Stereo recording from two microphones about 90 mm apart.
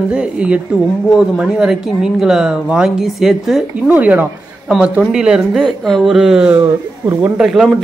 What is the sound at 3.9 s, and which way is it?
Speech, 15° right (ahead or behind).